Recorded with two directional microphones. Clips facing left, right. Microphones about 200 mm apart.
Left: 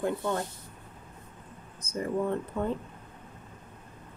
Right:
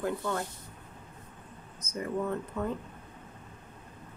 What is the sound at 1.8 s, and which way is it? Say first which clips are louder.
Speech: left 3 dB; 30° left (ahead or behind).